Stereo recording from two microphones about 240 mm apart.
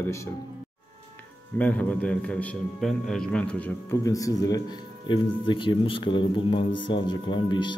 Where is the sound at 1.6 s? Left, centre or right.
Centre.